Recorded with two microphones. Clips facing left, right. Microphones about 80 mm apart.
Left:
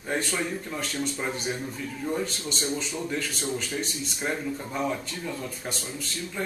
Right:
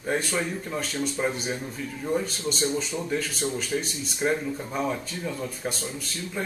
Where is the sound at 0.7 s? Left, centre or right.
Centre.